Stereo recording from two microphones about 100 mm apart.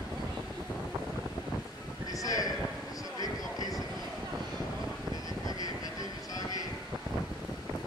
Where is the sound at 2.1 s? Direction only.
35° left (ahead or behind).